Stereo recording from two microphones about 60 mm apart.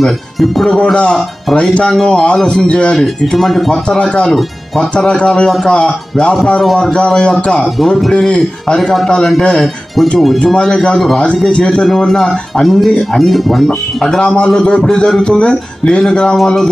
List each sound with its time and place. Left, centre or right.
0.0 s speech: centre
1.5 s speech: centre
1.9 s speech: centre
2.4 s speech: centre
3.0 s speech: centre
3.9 s speech: centre
6.3 s speech: centre
10.4 s speech: centre
14.2 s a man's voice: centre